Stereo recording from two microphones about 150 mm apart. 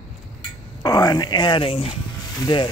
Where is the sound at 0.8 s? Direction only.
25° left (ahead or behind).